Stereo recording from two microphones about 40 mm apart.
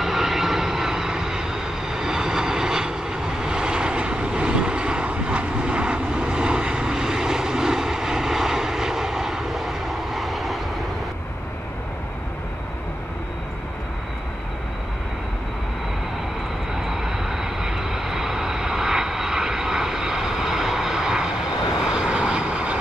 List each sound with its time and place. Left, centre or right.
0.0 s vehicle: centre
16.8 s vehicle: centre